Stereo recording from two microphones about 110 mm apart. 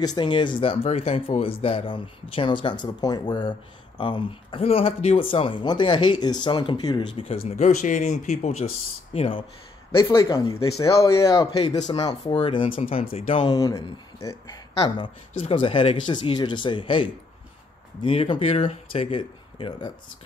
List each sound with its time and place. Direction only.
0.0 s speech: 40° left (ahead or behind)
7.2 s speech: 65° left (ahead or behind); by 8.6 s 80° left
9.1 s speech: 70° left (ahead or behind)
9.9 s speech: 25° left (ahead or behind)
11.6 s speech: 90° left
11.9 s speech: 40° left (ahead or behind); by 13.5 s 60° left (ahead or behind)
13.5 s speech: 35° left (ahead or behind)
15.5 s speech: 55° left (ahead or behind)